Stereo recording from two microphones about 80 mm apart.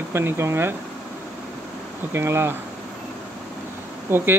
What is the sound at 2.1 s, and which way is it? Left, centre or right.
Speech, right.